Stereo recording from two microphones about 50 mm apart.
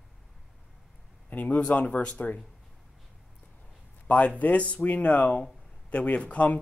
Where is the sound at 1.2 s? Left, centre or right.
Left.